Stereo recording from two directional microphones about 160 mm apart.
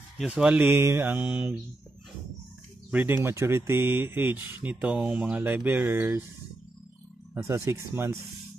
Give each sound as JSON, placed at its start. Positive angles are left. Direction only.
{"t": 0.3, "sound": "speech", "side_deg": -10}
{"t": 2.9, "sound": "speech", "side_deg": -10}
{"t": 7.4, "sound": "speech", "side_deg": -20}